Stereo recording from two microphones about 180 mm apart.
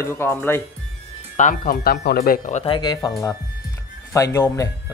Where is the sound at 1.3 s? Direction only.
45° left (ahead or behind).